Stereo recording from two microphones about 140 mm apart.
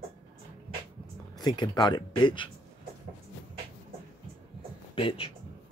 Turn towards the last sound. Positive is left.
turn(degrees=40)  # may be behind; listen again after turning